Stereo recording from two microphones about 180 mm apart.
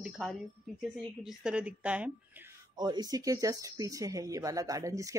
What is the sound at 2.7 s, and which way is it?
Speech, 25° right (ahead or behind).